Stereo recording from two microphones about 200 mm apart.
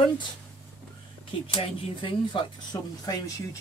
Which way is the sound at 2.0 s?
20° left (ahead or behind).